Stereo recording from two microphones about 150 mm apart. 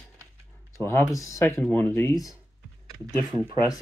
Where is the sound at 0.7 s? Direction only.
15° left (ahead or behind).